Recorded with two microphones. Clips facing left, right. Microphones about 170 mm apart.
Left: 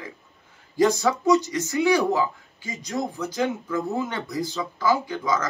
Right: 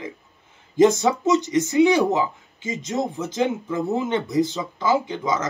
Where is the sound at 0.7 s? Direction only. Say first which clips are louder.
Right 4 dB; 20° right (ahead or behind).